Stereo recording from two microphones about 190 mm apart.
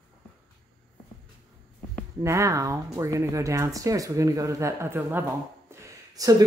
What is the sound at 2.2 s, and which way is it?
Speech, 15° right (ahead or behind).